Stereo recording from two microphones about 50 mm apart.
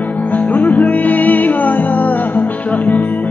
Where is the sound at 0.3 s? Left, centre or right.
Left.